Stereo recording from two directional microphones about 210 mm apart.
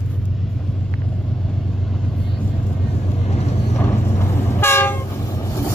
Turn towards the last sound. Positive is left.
turn(degrees=15)  # may be behind; listen again after turning